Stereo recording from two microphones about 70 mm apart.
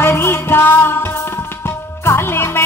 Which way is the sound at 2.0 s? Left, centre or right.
Left.